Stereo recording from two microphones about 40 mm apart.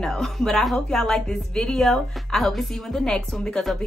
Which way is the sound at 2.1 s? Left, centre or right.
Centre.